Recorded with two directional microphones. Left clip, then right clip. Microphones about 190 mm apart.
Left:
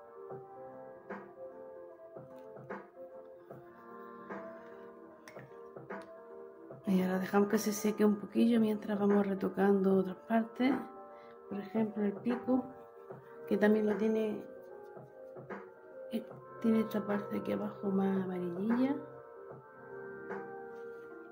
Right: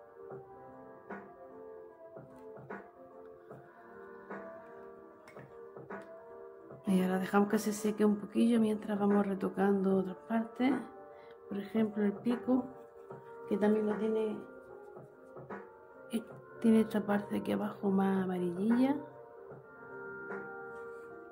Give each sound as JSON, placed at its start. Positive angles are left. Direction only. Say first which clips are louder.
{"t": 6.8, "sound": "speech", "louder": "right 1 dB", "side_deg": -10}
{"t": 11.5, "sound": "speech", "louder": "right 1 dB", "side_deg": -10}
{"t": 13.5, "sound": "speech", "louder": "left 2 dB", "side_deg": 10}
{"t": 16.1, "sound": "speech", "louder": "right 1 dB", "side_deg": -20}